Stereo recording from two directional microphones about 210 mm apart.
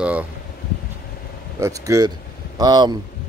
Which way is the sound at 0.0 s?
5° right (ahead or behind).